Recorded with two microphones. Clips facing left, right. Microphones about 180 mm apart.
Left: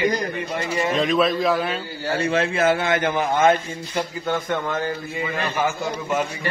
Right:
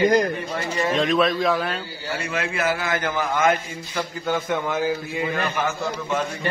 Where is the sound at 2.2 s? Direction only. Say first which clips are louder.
Left 6 dB; 30° left (ahead or behind).